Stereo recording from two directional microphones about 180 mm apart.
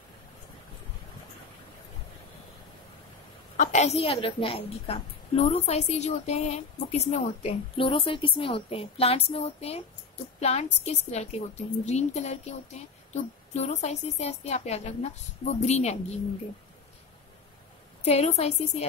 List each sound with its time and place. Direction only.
3.5 s a woman's voice: 40° left (ahead or behind)
18.0 s a woman's voice: 40° left (ahead or behind)